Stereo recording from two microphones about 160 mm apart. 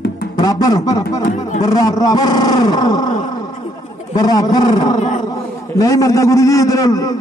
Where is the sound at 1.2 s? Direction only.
50° left (ahead or behind).